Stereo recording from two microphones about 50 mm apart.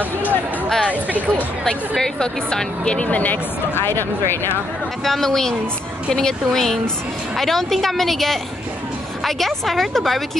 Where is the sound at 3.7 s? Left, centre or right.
Left.